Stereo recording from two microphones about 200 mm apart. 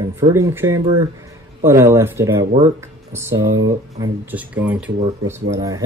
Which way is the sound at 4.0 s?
15° right (ahead or behind).